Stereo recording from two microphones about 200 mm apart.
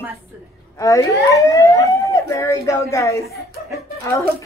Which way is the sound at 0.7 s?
15° left (ahead or behind).